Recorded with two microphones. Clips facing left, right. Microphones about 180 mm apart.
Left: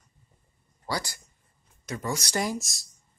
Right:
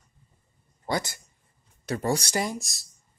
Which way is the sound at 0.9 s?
20° right (ahead or behind).